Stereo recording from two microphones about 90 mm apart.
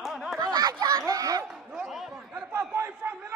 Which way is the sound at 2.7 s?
25° right (ahead or behind).